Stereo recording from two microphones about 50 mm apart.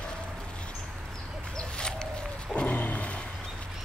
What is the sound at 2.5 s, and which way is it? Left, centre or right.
Music, left.